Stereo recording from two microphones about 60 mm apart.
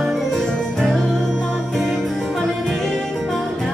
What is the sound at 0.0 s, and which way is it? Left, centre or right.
Music, centre.